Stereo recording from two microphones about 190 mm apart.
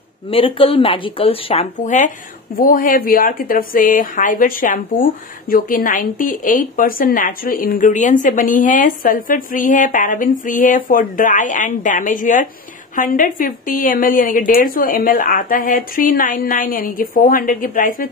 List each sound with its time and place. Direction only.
0.3 s speech: 30° left (ahead or behind); by 18.0 s 45° left (ahead or behind)